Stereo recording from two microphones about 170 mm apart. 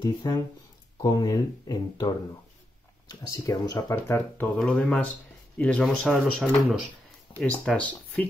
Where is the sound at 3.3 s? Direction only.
20° left (ahead or behind).